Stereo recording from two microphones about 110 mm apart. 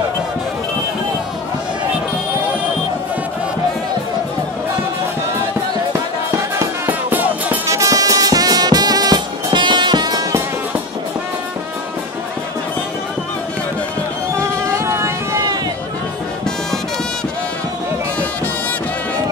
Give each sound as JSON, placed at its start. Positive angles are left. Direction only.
{"t": 6.9, "sound": "music", "side_deg": -15}
{"t": 7.6, "sound": "music", "side_deg": -30}
{"t": 14.3, "sound": "vehicle", "side_deg": -25}